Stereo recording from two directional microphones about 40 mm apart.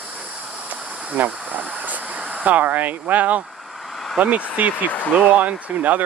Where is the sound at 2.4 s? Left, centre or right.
Right.